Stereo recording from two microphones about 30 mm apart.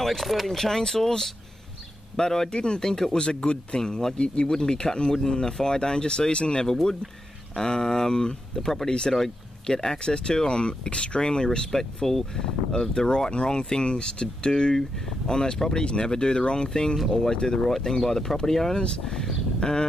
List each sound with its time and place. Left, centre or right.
0.0 s speech: centre
2.5 s speech: left
2.8 s speech: centre
6.7 s speech: centre
8.6 s speech: centre
9.9 s speech: left
11.7 s speech: centre
12.4 s speech: left
17.6 s speech: centre